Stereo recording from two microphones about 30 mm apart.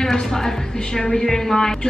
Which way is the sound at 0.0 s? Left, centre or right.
Centre.